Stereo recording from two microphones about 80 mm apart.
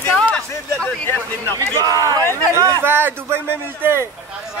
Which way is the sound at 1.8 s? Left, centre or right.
Right.